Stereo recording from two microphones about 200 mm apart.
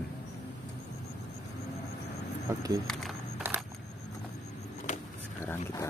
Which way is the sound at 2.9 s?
Centre (ahead or behind).